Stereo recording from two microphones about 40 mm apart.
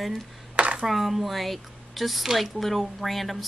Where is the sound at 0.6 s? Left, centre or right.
Right.